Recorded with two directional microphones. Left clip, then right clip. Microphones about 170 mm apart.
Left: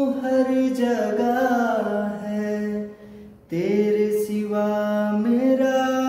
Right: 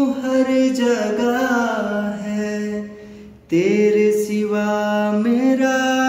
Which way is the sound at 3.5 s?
15° left (ahead or behind).